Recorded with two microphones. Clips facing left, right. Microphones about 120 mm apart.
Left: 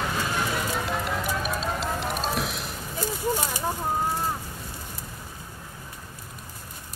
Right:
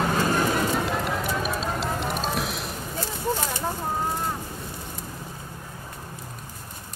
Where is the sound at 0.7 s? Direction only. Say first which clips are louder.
Right 3 dB; centre (ahead or behind).